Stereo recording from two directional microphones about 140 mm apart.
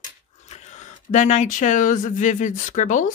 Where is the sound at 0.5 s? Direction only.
55° left (ahead or behind).